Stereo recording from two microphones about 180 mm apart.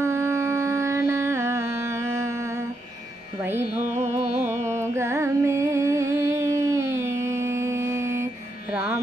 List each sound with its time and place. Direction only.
0.0 s music: 15° right (ahead or behind)
4.1 s music: 15° right (ahead or behind)